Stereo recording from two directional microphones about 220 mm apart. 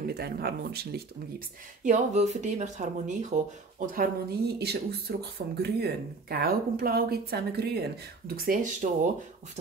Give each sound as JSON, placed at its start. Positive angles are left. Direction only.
{"t": 0.0, "sound": "speech", "side_deg": -45}
{"t": 1.8, "sound": "speech", "side_deg": -35}